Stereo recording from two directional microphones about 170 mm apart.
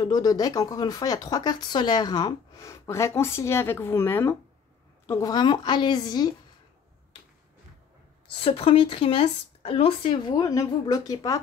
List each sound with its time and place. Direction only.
0.0 s speech: 25° left (ahead or behind)
8.3 s speech: 35° left (ahead or behind)